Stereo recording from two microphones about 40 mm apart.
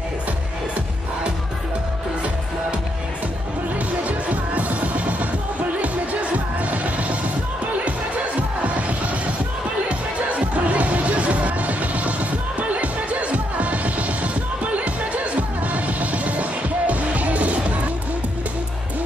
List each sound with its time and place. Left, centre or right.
4.3 s music: right
6.3 s music: right
8.4 s music: right